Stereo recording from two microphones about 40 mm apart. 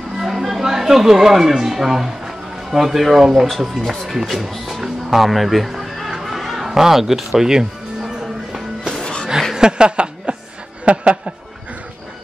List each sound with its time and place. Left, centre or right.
0.2 s speech: centre
3.4 s speech: centre
4.1 s music: centre
8.5 s music: centre
9.0 s a sound: centre
9.6 s speech: right